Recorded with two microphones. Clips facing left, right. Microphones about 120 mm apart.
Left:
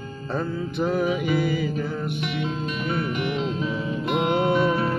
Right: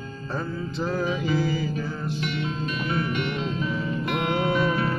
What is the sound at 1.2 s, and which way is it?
Music, 60° left (ahead or behind).